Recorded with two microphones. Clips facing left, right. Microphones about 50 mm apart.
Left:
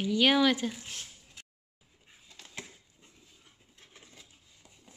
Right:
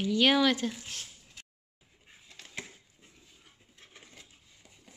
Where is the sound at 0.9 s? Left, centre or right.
Centre.